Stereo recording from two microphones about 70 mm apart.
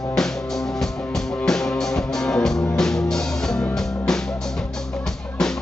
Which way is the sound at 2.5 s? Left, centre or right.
Centre.